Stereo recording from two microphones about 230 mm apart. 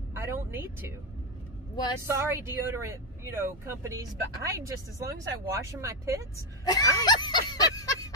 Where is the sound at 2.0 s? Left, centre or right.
Centre.